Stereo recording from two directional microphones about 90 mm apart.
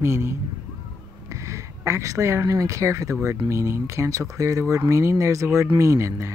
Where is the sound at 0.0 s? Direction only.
30° right (ahead or behind).